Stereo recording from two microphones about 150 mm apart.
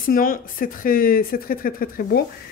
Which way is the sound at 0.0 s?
70° left (ahead or behind).